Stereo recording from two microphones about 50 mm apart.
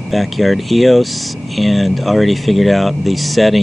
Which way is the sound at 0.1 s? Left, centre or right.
Centre.